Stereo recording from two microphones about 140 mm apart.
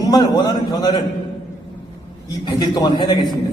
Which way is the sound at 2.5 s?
30° left (ahead or behind).